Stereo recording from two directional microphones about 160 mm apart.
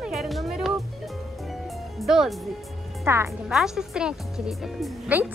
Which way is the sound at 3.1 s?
15° right (ahead or behind).